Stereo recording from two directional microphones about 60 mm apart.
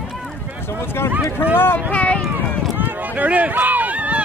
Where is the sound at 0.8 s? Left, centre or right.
Left.